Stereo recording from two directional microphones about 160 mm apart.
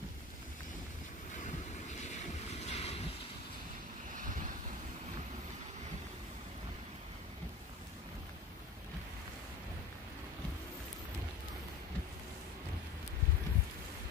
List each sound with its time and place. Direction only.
2.0 s vehicle: 45° left (ahead or behind)